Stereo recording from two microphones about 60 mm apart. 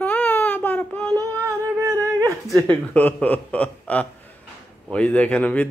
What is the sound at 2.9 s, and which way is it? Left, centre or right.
A man's voice, left.